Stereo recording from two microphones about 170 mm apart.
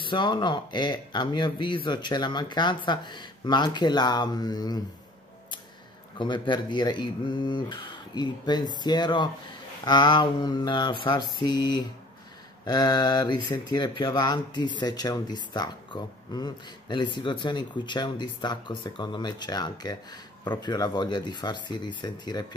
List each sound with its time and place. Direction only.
0.0 s speech: 25° left (ahead or behind)
6.1 s speech: 30° left (ahead or behind)